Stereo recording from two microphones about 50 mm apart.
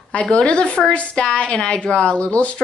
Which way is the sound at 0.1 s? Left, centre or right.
Centre.